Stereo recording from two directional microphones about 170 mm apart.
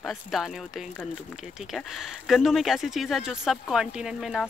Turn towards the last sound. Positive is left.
turn(degrees=0)  # may be behind; listen again after turning